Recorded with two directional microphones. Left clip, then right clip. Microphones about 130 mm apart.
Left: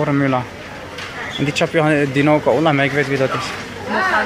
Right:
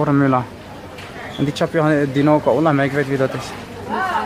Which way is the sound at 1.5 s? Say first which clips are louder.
Left 1 dB; 15° right (ahead or behind).